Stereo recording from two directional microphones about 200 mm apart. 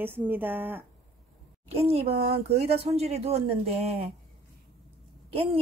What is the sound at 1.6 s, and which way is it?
A child's voice, 30° right (ahead or behind).